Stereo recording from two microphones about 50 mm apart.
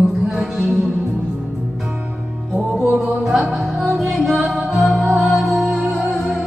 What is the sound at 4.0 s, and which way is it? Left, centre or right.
Music, centre.